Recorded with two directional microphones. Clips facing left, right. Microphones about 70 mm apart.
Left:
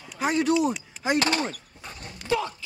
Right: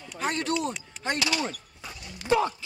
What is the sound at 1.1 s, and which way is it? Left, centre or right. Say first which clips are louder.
Speech: left 5 dB; left.